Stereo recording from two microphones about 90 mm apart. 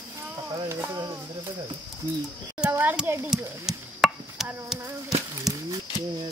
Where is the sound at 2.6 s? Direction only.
20° right (ahead or behind).